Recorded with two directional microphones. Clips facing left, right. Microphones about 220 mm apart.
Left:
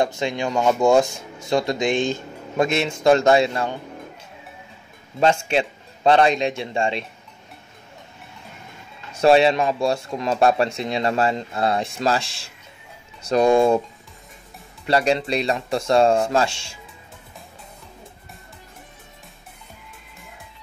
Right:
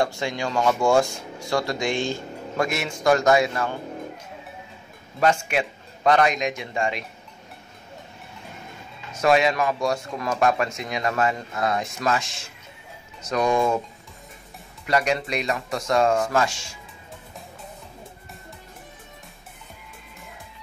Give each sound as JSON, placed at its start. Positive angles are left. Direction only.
{"t": 0.0, "sound": "speech", "side_deg": 20}
{"t": 5.2, "sound": "speech", "side_deg": 25}
{"t": 9.1, "sound": "speech", "side_deg": 30}
{"t": 14.9, "sound": "speech", "side_deg": 30}